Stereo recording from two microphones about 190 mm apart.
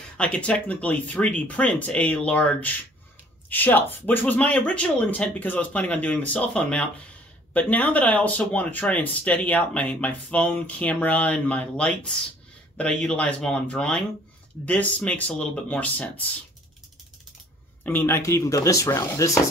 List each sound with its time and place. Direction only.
0.2 s speech: 5° left (ahead or behind)
17.8 s speech: 10° left (ahead or behind)